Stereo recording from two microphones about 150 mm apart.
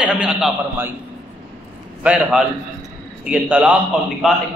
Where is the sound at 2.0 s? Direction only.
5° right (ahead or behind).